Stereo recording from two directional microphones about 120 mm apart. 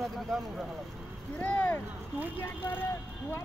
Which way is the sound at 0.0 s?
Centre (ahead or behind).